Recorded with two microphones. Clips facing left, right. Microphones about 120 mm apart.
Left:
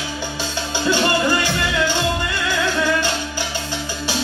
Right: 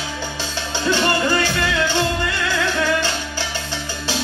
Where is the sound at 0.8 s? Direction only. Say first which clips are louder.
Even; 15° left (ahead or behind).